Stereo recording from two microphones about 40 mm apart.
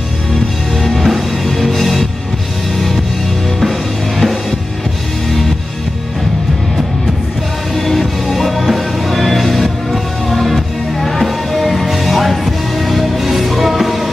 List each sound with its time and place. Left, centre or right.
0.7 s music: centre
4.2 s music: centre
7.7 s music: centre